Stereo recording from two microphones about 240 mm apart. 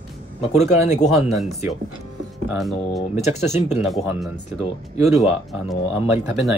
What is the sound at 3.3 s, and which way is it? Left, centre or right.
Speech, centre.